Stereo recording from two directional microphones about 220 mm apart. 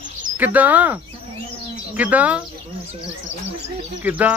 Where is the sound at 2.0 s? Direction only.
5° right (ahead or behind).